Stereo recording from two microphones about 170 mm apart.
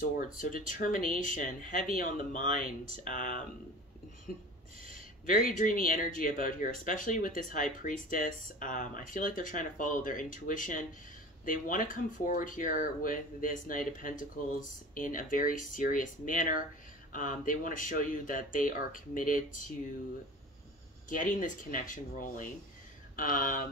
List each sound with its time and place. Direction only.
0.0 s speech: 50° left (ahead or behind)
4.8 s speech: 50° left (ahead or behind)
21.1 s speech: 50° left (ahead or behind)